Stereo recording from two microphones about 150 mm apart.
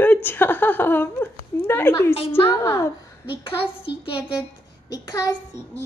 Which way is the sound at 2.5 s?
20° left (ahead or behind).